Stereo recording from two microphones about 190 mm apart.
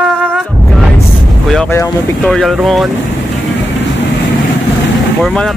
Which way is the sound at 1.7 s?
15° left (ahead or behind).